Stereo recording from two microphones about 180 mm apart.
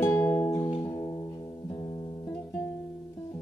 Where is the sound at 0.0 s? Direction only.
10° left (ahead or behind).